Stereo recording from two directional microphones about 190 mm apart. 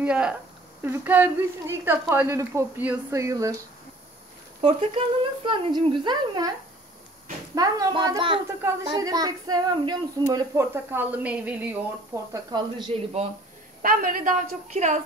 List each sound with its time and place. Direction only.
0.0 s speech: 5° right (ahead or behind)
4.6 s a woman's voice: 30° right (ahead or behind)
7.5 s a woman's voice: 20° right (ahead or behind)
12.3 s a woman's voice: 20° right (ahead or behind)
13.8 s a woman's voice: 45° right (ahead or behind)